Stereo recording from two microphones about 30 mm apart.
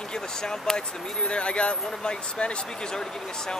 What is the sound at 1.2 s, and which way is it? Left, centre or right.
Speech, left.